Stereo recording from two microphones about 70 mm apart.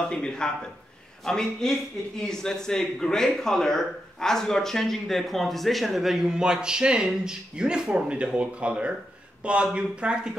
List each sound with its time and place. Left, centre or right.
0.0 s a man's voice: centre